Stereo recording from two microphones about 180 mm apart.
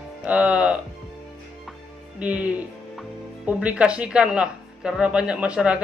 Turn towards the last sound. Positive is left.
turn(degrees=-5)  # may be behind; listen again after turning